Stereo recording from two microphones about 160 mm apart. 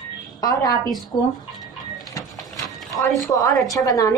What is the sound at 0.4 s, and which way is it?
Speech, 25° left (ahead or behind).